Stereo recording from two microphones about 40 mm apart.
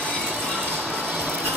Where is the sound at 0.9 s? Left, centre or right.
Right.